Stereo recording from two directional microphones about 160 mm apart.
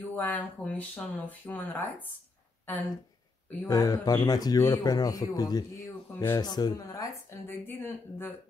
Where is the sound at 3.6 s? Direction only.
20° left (ahead or behind).